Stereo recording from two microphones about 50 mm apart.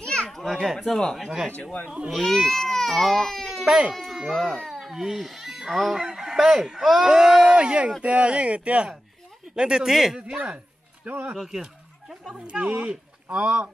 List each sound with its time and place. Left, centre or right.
0.0 s children playing: centre
0.3 s children playing: centre
0.6 s speech: centre
1.5 s speech: left
2.2 s baby cry: centre
3.9 s speech: centre
10.2 s speech: right
11.1 s speech: right
11.3 s speech: centre
12.4 s speech: right